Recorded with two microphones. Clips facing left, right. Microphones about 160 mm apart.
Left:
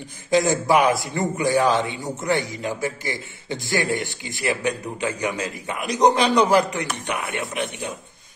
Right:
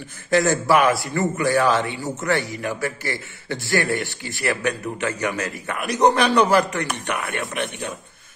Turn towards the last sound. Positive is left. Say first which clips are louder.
# even
turn(degrees=10)  # may be behind; listen again after turning